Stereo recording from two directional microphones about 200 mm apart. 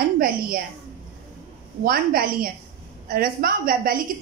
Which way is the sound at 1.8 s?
45° right (ahead or behind).